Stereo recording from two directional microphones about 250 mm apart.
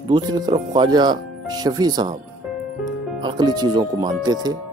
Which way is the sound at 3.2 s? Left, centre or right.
Centre.